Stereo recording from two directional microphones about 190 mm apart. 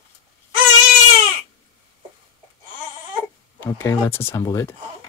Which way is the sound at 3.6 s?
15° left (ahead or behind).